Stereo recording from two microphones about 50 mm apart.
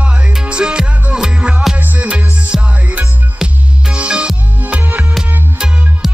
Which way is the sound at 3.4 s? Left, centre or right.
Centre.